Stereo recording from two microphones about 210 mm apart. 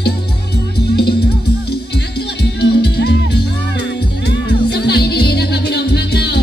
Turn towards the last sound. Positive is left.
turn(degrees=50)  # may be behind; listen again after turning